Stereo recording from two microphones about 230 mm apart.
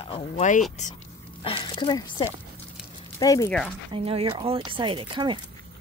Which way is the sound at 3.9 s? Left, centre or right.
Right.